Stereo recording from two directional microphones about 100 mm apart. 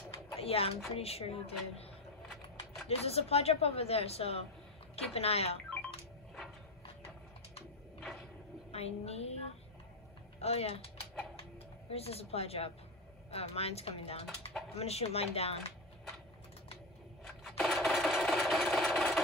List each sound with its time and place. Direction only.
0.4 s speech: 75° left (ahead or behind)
2.9 s a woman's voice: 90° left
8.0 s a sound: centre (ahead or behind)
8.7 s a woman's voice: 90° left
10.4 s a woman's voice: 90° left
11.9 s a woman's voice: 90° left
17.3 s rub: centre (ahead or behind)